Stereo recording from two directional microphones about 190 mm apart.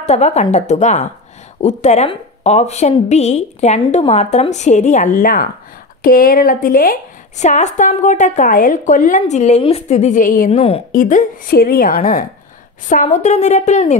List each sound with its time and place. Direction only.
0.0 s a woman's voice: 35° left (ahead or behind)
10.5 s speech: 30° left (ahead or behind)
10.9 s a woman's voice: 45° left (ahead or behind)